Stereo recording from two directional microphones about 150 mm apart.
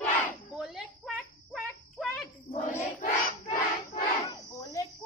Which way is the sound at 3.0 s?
60° left (ahead or behind).